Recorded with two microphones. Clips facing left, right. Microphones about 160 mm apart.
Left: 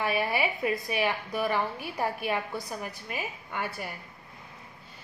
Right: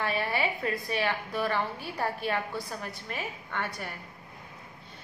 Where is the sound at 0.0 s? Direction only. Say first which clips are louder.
Left 2 dB; 10° left (ahead or behind).